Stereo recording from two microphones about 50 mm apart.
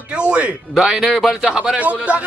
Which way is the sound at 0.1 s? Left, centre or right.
Right.